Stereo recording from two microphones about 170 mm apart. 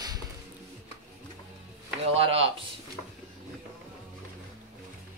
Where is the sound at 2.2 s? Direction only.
30° right (ahead or behind).